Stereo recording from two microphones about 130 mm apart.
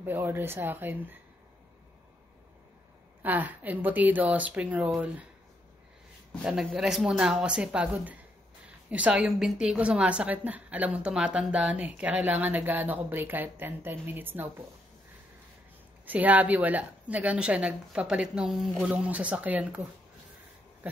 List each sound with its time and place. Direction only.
0.0 s a woman's voice: 15° right (ahead or behind)
3.2 s a woman's voice: 15° right (ahead or behind)
6.4 s a woman's voice: 5° right (ahead or behind)
16.1 s a woman's voice: 10° right (ahead or behind)
20.8 s a woman's voice: 10° right (ahead or behind)